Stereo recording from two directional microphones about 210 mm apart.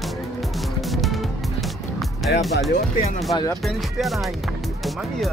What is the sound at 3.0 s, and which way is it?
Speech, 30° left (ahead or behind).